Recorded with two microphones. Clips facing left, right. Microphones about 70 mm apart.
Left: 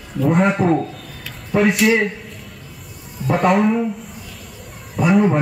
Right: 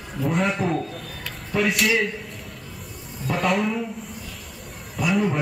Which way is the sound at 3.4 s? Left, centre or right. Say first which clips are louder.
Left 7 dB; centre.